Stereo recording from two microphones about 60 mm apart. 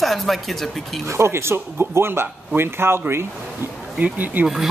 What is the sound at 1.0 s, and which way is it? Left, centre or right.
Speech, right.